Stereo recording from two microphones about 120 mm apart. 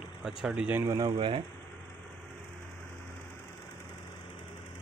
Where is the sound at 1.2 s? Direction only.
45° right (ahead or behind).